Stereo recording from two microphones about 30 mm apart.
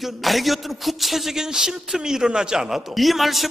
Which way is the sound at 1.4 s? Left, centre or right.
Centre.